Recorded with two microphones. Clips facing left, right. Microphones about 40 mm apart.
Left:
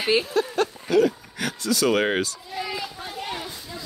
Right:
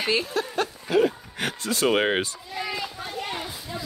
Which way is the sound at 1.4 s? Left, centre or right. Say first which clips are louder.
Left 1 dB; right.